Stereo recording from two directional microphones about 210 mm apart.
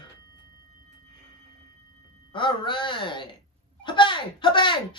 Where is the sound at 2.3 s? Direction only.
25° left (ahead or behind).